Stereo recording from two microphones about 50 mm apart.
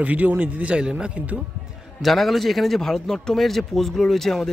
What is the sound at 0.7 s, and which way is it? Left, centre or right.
Speech, centre.